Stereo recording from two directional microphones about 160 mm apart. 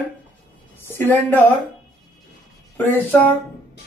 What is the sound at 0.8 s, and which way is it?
Speech, 15° left (ahead or behind).